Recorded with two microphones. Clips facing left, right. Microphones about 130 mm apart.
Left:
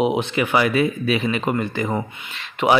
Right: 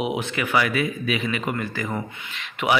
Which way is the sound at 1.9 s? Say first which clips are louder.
Left 4 dB; 35° left (ahead or behind).